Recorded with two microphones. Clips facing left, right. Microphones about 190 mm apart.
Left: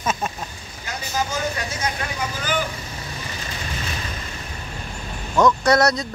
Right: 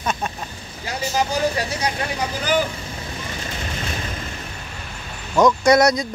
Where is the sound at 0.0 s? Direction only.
5° left (ahead or behind).